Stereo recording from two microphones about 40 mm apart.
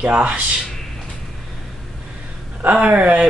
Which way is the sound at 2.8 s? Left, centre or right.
Right.